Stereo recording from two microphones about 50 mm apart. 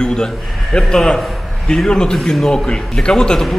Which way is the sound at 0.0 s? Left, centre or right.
Centre.